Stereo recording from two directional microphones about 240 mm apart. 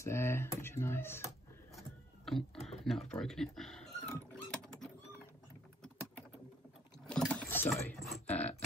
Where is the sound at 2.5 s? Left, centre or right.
Left.